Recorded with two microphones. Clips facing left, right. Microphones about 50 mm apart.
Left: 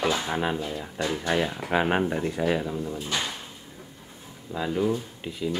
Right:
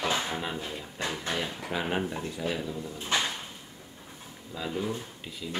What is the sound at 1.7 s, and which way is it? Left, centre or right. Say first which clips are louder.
Speech: left 7 dB; left.